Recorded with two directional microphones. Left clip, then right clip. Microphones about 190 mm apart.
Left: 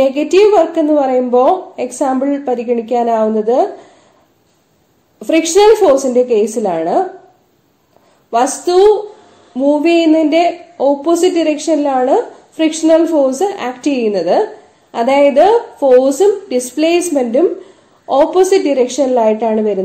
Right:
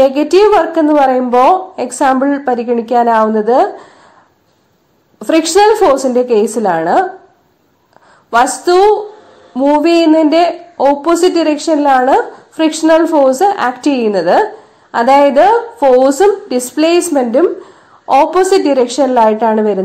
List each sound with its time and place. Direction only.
0.0 s a woman's voice: 30° right (ahead or behind)
5.2 s a woman's voice: 30° right (ahead or behind)
8.3 s a woman's voice: 30° right (ahead or behind)